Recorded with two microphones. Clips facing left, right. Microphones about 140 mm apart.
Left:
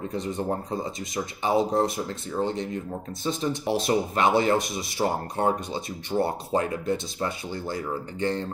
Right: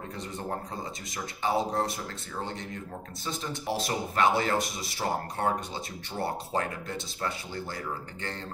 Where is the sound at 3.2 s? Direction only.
20° left (ahead or behind).